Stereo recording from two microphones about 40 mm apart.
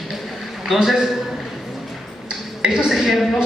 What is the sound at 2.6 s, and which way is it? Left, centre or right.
Speech, right.